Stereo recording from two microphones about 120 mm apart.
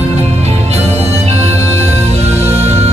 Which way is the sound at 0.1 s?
65° right (ahead or behind).